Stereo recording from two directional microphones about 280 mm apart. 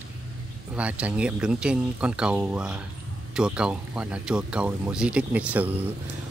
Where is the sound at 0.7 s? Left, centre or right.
Centre.